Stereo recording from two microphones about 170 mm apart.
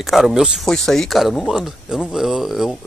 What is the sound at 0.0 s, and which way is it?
Speech, centre (ahead or behind).